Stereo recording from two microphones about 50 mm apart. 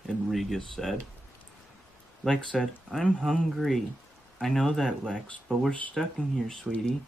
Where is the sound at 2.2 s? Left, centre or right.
Centre.